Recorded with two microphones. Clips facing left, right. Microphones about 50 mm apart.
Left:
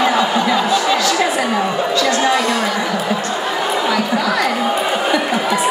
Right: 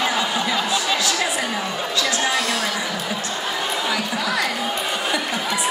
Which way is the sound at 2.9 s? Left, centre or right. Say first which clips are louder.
Left 7 dB; centre.